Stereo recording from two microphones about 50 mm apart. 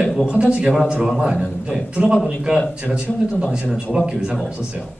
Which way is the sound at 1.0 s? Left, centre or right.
Centre.